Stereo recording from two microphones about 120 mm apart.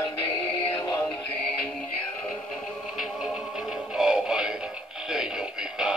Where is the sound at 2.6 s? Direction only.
Centre (ahead or behind).